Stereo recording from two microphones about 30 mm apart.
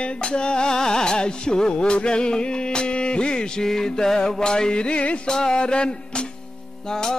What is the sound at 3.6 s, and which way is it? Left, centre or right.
Music, centre.